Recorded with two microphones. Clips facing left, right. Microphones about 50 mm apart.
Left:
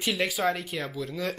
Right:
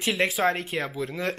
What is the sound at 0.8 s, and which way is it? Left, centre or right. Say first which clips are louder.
Speech: right 3 dB; right.